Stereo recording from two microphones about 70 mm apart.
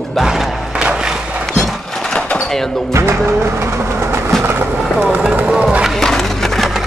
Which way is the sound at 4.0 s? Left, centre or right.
Right.